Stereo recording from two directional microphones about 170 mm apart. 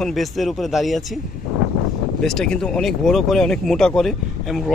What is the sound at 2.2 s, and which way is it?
A man's voice, 5° left (ahead or behind).